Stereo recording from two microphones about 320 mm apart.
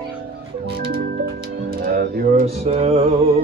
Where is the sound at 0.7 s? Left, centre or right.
Right.